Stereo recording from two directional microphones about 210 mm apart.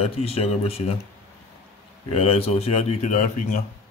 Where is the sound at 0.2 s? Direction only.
30° left (ahead or behind).